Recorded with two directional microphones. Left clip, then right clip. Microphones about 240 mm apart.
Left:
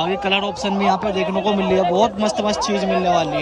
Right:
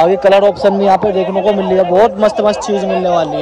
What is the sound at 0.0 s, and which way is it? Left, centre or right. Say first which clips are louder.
A man's voice: right 11 dB; centre.